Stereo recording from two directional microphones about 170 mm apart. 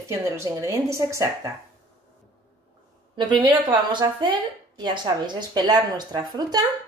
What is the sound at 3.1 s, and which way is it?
A woman's voice, 30° right (ahead or behind).